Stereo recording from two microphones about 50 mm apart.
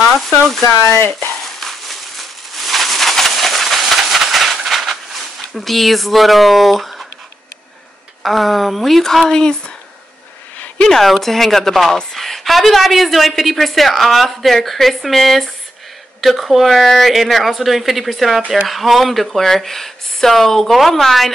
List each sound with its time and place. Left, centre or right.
0.3 s speech: centre
0.7 s speech: left
1.6 s a sound: centre
5.6 s a woman's voice: centre
8.2 s a woman's voice: centre
10.8 s a woman's voice: centre